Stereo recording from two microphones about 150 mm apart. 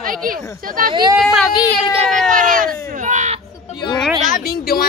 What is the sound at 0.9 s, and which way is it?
Speech, 30° right (ahead or behind).